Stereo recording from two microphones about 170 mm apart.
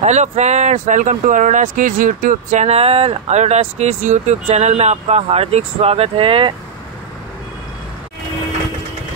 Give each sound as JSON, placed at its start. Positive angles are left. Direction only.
{"t": 0.0, "sound": "speech", "side_deg": -45}